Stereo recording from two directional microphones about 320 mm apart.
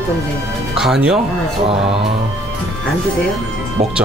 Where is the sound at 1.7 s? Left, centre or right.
Centre.